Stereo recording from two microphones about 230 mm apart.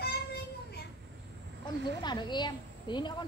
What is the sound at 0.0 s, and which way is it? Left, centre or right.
Child singing, left.